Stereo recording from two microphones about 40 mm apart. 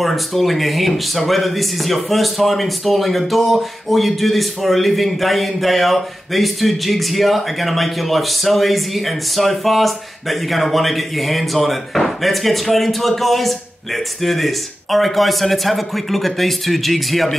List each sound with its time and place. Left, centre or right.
0.0 s speech: centre